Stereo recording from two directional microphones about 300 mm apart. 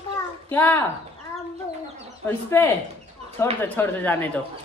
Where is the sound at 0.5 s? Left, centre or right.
Centre.